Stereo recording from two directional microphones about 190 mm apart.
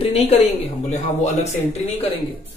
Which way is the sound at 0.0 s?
30° left (ahead or behind).